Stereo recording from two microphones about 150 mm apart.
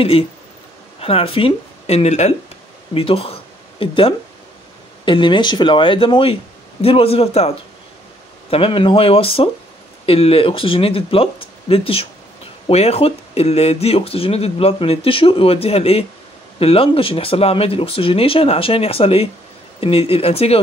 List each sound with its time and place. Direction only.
0.0 s speech: 40° left (ahead or behind)